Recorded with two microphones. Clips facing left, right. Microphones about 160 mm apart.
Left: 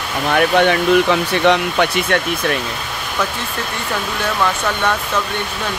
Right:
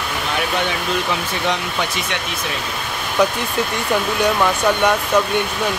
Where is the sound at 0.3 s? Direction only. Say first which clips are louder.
Left 9 dB; 60° left (ahead or behind).